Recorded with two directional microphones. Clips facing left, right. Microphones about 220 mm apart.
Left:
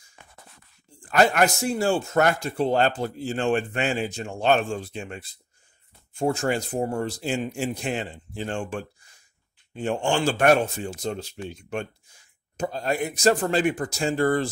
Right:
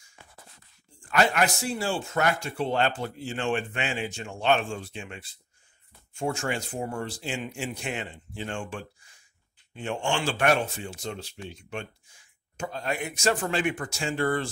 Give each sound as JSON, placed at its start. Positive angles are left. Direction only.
{"t": 1.0, "sound": "speech", "side_deg": 40}